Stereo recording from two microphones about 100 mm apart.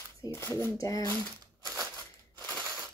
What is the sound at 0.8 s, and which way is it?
Speech, 35° left (ahead or behind).